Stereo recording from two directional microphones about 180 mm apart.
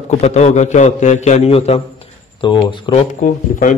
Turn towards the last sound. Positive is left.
turn(degrees=45)  # may be behind; listen again after turning